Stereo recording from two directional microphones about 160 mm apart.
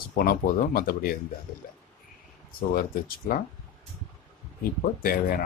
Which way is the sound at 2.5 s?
65° left (ahead or behind).